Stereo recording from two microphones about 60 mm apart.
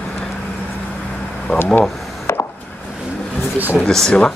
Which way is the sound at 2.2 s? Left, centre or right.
Left.